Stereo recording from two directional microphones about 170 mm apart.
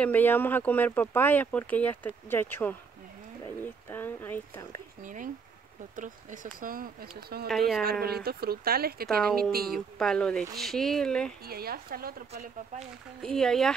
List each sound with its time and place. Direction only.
0.0 s speech: 10° left (ahead or behind)
5.0 s speech: 50° right (ahead or behind)
9.9 s speech: 5° left (ahead or behind)
11.4 s speech: 65° right (ahead or behind)
13.2 s speech: 5° left (ahead or behind)